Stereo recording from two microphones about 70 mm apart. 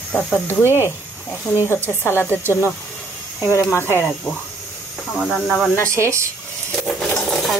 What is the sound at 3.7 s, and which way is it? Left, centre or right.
Speech, left.